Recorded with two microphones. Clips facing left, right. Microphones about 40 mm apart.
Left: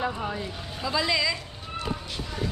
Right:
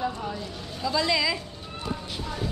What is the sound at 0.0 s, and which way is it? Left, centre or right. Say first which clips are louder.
Speech: left 1 dB; left.